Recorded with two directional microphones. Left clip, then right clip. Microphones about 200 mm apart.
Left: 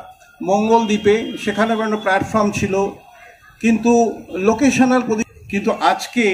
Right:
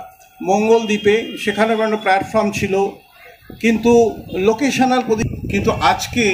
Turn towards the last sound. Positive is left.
turn(degrees=-25)  # may be behind; listen again after turning